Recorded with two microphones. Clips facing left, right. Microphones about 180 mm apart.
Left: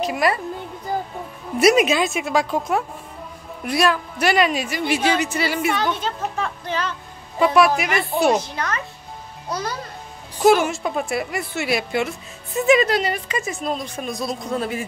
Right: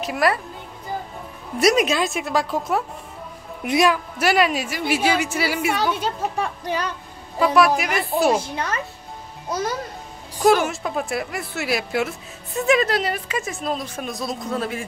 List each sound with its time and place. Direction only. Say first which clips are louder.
0.0 s a woman's voice: even; centre (ahead or behind)
1.6 s a woman's voice: left 2 dB; 5° left (ahead or behind)
3.6 s a woman's voice: right 1 dB; 15° right (ahead or behind)
4.2 s a woman's voice: left 1 dB; 5° right (ahead or behind)
7.3 s a woman's voice: left 1 dB; centre (ahead or behind)
10.4 s a woman's voice: left 2 dB; centre (ahead or behind)